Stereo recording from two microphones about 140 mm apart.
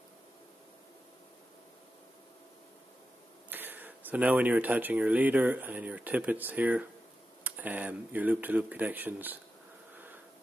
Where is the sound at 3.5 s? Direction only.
15° right (ahead or behind).